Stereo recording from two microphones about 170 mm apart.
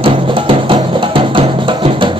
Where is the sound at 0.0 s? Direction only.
30° right (ahead or behind).